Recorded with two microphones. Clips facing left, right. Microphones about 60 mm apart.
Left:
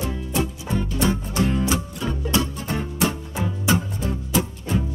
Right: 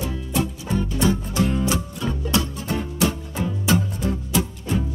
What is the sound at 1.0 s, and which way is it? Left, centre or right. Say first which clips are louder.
Music: right 1 dB; left.